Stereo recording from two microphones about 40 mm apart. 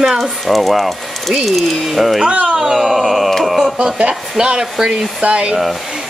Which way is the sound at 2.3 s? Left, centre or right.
Right.